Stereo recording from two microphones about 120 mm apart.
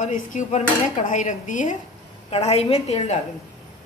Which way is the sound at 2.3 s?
60° left (ahead or behind).